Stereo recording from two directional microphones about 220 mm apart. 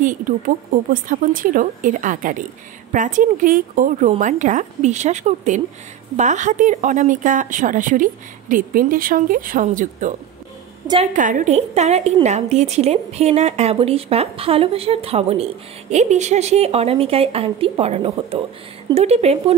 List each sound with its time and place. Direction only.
0.0 s speech: 35° right (ahead or behind)
11.1 s a woman's voice: 35° right (ahead or behind)